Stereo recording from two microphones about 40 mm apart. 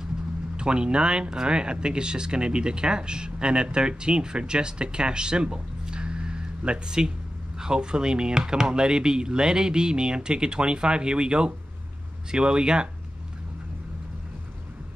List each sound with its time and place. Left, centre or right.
0.6 s speech: right